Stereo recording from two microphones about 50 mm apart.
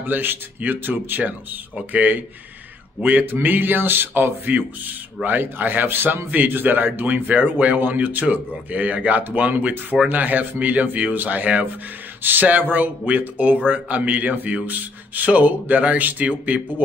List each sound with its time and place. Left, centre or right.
0.0 s a man's voice: right
12.2 s a man's voice: right